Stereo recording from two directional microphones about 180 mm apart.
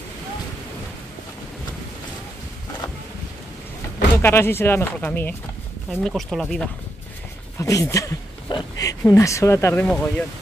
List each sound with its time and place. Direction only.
4.2 s speech: 15° left (ahead or behind)
7.5 s speech: 20° left (ahead or behind)